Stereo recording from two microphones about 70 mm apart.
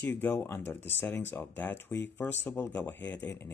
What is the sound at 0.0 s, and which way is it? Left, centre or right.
Speech, left.